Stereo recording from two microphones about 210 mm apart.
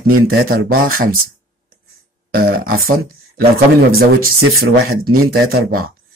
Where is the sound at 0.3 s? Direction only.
45° right (ahead or behind).